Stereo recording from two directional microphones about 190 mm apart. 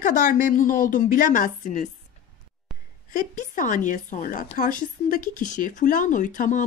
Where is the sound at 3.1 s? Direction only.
45° left (ahead or behind).